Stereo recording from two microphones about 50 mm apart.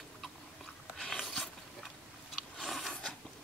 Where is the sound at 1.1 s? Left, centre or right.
Centre.